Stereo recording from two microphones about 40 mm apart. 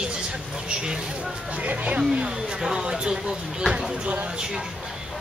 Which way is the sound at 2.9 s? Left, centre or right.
Centre.